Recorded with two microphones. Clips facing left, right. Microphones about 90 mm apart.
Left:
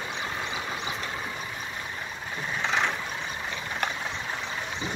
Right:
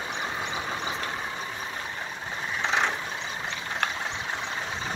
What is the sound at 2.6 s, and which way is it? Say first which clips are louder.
Vehicle: right 1 dB; 25° right (ahead or behind).